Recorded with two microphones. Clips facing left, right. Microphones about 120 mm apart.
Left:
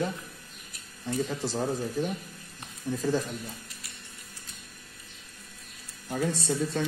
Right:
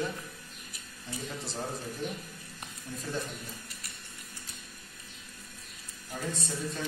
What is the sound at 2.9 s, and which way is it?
Speech, 90° left.